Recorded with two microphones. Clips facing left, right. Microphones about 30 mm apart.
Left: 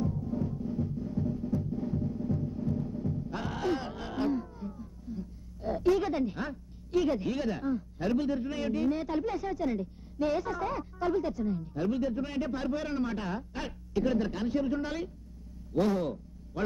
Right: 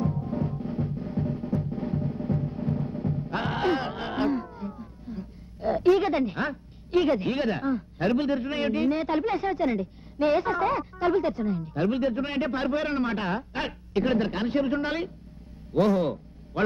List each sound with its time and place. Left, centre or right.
0.0 s music: right
15.7 s a man's voice: right